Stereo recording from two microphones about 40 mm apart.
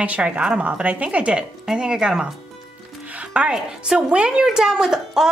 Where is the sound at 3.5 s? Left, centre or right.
Right.